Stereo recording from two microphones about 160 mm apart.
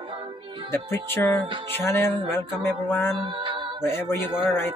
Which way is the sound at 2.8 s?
10° left (ahead or behind).